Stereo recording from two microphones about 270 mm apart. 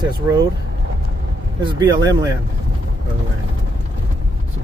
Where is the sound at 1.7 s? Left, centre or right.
Centre.